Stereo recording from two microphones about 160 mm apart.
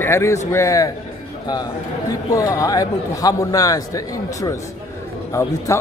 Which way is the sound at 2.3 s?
20° left (ahead or behind).